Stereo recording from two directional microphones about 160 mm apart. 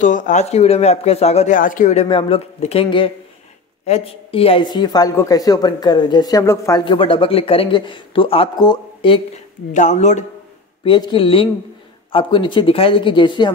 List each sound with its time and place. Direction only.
0.0 s speech: 50° left (ahead or behind)
2.0 s a woman's voice: 35° left (ahead or behind); by 6.8 s 20° left (ahead or behind)
6.8 s speech: 30° left (ahead or behind)
9.8 s speech: 50° left (ahead or behind)
10.8 s speech: 30° left (ahead or behind)